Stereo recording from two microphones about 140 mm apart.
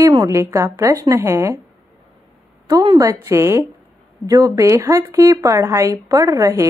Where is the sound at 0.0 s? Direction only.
25° right (ahead or behind).